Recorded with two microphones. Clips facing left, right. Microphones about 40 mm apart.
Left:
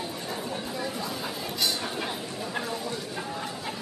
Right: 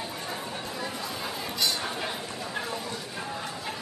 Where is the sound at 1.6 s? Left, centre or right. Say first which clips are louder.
Even; centre.